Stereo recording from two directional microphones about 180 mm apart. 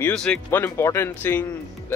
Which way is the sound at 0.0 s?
5° left (ahead or behind).